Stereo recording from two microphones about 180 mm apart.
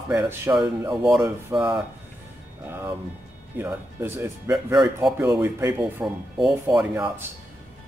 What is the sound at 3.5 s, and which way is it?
Speech, 10° right (ahead or behind).